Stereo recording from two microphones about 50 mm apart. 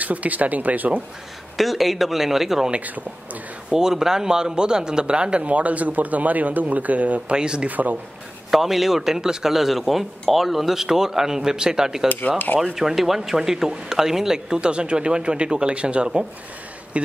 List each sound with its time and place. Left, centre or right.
0.0 s speech: right
1.6 s speech: centre
2.7 s speech: right
3.7 s a man's voice: centre; by 7.3 s right
7.3 s a man's voice: centre
7.7 s speech: right
8.5 s speech: centre
17.0 s a sound: right